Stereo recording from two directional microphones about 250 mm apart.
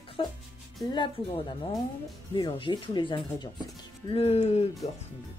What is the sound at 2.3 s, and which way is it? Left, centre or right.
Speech, centre.